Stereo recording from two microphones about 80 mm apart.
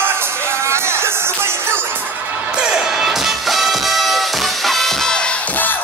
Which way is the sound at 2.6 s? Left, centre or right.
Centre.